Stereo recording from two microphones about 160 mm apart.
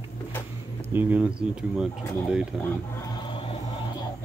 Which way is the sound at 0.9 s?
10° right (ahead or behind).